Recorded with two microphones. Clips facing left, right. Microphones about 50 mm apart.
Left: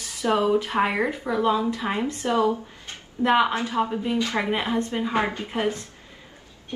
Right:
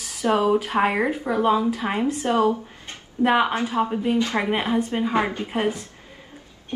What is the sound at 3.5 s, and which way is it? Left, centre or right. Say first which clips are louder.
A woman's voice: right 2 dB; right.